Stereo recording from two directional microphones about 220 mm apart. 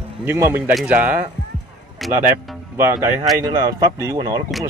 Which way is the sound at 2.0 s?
Centre (ahead or behind).